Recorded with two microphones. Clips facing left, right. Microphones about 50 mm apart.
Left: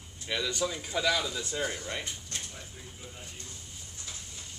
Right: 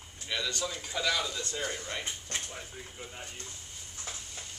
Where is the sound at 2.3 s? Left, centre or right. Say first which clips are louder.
Right 5 dB; right.